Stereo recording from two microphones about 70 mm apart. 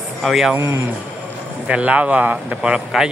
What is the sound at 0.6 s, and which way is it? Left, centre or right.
Speech, right.